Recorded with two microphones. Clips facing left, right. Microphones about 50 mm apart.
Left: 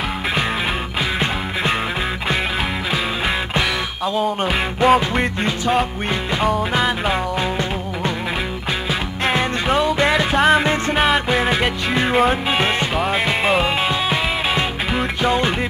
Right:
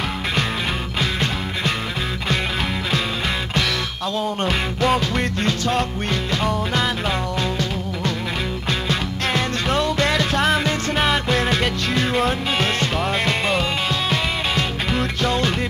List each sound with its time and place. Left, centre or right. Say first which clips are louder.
4.2 s music: left 2 dB; centre
9.3 s music: left 3 dB; centre